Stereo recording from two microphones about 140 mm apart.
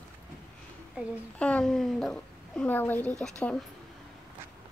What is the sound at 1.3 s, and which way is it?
Speech, 10° left (ahead or behind).